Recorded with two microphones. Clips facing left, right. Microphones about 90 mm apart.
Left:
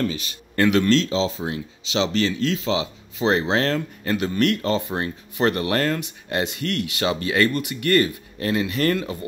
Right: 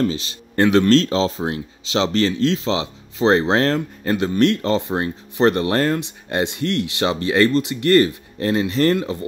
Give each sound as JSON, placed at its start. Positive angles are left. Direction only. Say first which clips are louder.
{"t": 0.0, "sound": "speech", "louder": "right 4 dB", "side_deg": -30}